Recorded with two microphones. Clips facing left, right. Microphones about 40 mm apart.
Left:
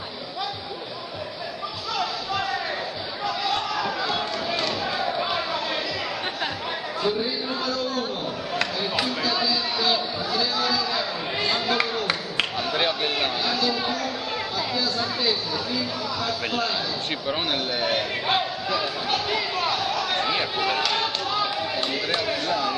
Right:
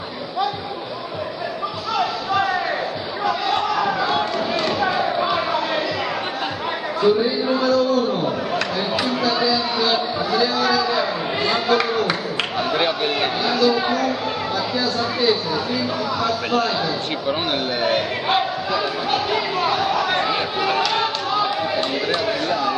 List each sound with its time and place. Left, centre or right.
2.0 s basketball bounce: centre
3.3 s a sound: centre
7.0 s speech: centre
9.2 s chatter: centre
12.5 s speech: centre
17.8 s speech: centre